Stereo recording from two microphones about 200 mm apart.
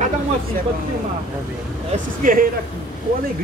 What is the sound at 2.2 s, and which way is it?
Speech, 40° right (ahead or behind).